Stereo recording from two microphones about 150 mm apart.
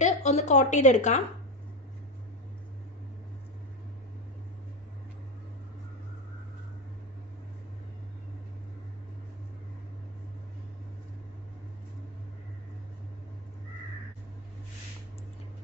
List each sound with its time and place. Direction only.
0.0 s speech: 50° left (ahead or behind)